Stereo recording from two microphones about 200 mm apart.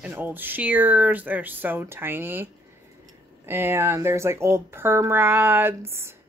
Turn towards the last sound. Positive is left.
turn(degrees=-10)  # may be behind; listen again after turning